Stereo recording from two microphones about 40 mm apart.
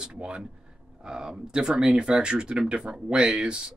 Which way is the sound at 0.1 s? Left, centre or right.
Right.